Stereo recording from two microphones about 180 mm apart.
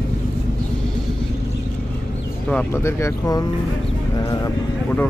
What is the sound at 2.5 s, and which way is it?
Speech, 15° left (ahead or behind).